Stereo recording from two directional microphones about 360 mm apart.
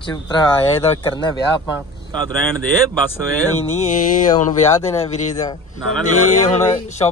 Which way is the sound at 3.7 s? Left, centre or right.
Left.